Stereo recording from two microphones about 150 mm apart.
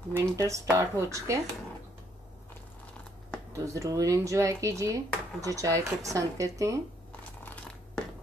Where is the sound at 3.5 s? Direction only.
20° right (ahead or behind).